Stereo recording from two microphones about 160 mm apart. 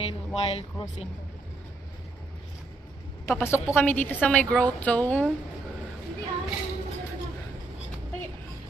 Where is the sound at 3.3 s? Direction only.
15° left (ahead or behind).